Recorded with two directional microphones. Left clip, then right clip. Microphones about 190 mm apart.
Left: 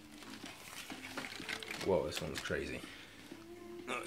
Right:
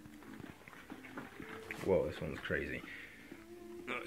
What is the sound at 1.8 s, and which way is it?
Speech, 10° left (ahead or behind).